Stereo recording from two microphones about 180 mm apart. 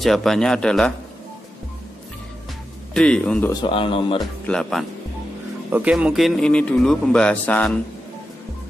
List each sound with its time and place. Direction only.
0.0 s speech: centre (ahead or behind)
2.9 s speech: 5° left (ahead or behind)
3.6 s speech: 30° left (ahead or behind)
4.5 s speech: 5° left (ahead or behind)